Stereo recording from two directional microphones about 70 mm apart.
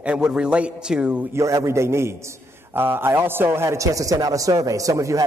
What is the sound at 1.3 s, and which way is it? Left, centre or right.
A man's voice, right.